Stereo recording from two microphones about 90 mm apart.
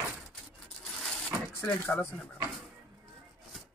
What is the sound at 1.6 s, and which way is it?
Speech, 20° left (ahead or behind).